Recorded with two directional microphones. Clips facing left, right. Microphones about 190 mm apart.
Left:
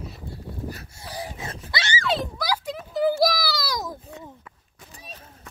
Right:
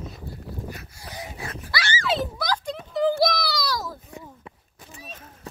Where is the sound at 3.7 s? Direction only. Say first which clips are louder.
Even; 20° left (ahead or behind).